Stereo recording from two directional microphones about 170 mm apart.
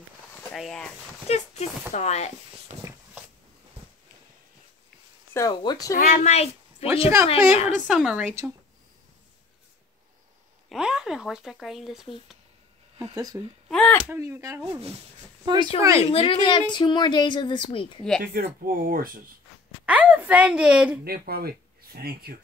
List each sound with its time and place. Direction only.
0.5 s speech: centre (ahead or behind)
1.2 s a sound: 40° left (ahead or behind)
2.0 s a woman's voice: 40° left (ahead or behind)
5.3 s a woman's voice: 25° left (ahead or behind)
5.9 s a woman's voice: 50° left (ahead or behind)
7.8 s a woman's voice: centre (ahead or behind)
10.7 s speech: 5° right (ahead or behind)
13.0 s speech: 20° right (ahead or behind)
13.7 s a sound: 5° left (ahead or behind)
14.0 s a woman's voice: 15° right (ahead or behind)
16.0 s a woman's voice: 35° left (ahead or behind)
18.2 s speech: 60° right (ahead or behind)
19.9 s a woman's voice: 10° right (ahead or behind)
21.0 s speech: 65° right (ahead or behind)